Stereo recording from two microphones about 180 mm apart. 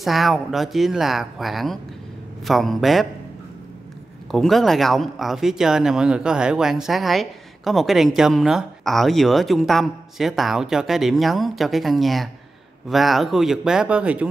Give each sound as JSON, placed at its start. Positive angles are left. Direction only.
{"t": 0.0, "sound": "speech", "side_deg": 0}
{"t": 4.3, "sound": "speech", "side_deg": 0}